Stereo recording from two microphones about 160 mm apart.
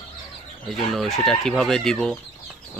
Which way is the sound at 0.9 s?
Centre (ahead or behind).